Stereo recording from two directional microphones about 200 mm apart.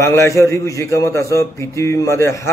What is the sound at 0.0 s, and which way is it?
A man's voice, 15° left (ahead or behind).